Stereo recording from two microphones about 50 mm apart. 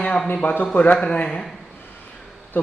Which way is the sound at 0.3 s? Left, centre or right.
Left.